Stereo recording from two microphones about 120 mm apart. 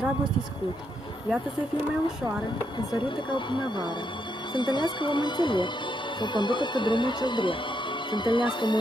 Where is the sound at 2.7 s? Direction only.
40° left (ahead or behind).